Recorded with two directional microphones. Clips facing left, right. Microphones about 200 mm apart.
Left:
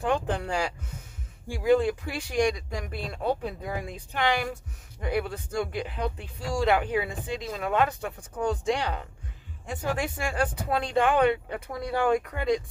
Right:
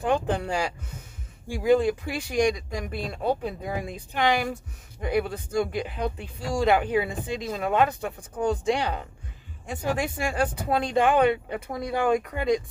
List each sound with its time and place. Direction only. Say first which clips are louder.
0.1 s speech: right 3 dB; 20° right (ahead or behind)